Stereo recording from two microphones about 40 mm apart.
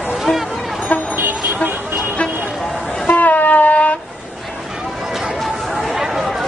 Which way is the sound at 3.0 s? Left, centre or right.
Left.